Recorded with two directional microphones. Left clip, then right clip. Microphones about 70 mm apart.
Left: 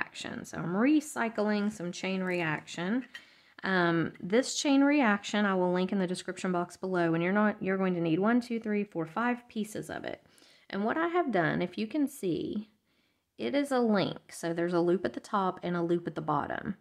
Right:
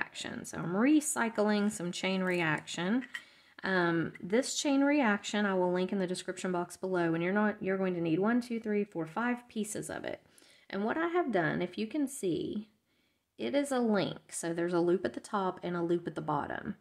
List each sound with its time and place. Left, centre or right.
0.0 s speech: centre
3.6 s speech: left
3.9 s speech: left; by 10.2 s centre
10.7 s speech: left